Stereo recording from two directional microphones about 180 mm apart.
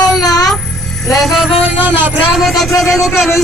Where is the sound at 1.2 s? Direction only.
Centre (ahead or behind).